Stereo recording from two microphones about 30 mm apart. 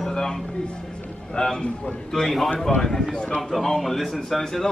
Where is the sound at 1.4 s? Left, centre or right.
Centre.